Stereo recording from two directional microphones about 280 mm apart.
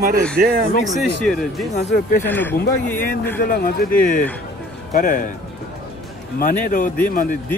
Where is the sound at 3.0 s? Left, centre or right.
Left.